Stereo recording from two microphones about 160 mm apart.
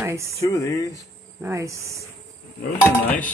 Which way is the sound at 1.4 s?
20° right (ahead or behind).